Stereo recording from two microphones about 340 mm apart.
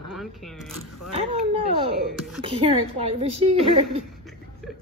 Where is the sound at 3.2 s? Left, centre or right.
Centre.